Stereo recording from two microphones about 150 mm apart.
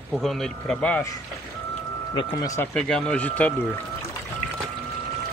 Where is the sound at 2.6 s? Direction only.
5° left (ahead or behind).